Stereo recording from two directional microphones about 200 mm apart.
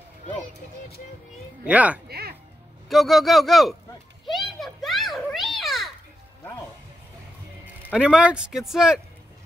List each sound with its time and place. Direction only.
1.6 s speech: 5° right (ahead or behind)
2.0 s a sound: 50° right (ahead or behind)
2.9 s speech: centre (ahead or behind)
4.3 s children playing: centre (ahead or behind)
7.9 s speech: 5° right (ahead or behind)